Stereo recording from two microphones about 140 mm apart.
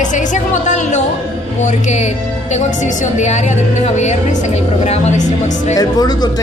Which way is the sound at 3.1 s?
55° left (ahead or behind).